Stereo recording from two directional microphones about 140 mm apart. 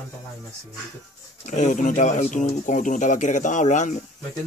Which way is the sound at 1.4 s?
60° left (ahead or behind).